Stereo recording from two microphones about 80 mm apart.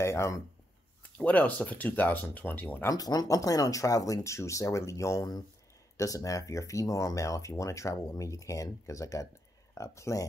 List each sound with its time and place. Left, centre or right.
0.0 s speech: left
1.1 s speech: centre
2.9 s speech: left